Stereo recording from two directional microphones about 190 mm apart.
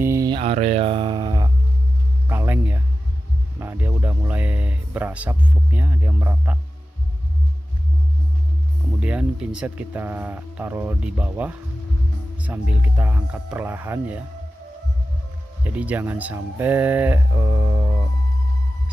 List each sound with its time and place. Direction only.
0.0 s mantra: 15° right (ahead or behind)
0.4 s speech: 35° right (ahead or behind)
2.2 s music: 10° right (ahead or behind)
9.0 s speech: 5° right (ahead or behind)
15.6 s speech: 10° right (ahead or behind)